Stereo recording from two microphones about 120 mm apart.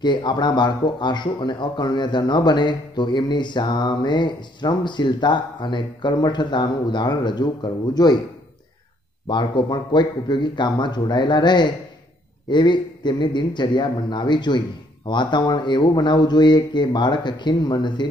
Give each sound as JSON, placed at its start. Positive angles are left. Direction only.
{"t": 0.0, "sound": "speech", "side_deg": 40}
{"t": 9.3, "sound": "speech", "side_deg": 40}